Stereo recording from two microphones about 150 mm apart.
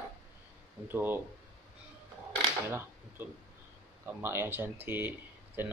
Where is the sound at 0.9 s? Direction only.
15° right (ahead or behind).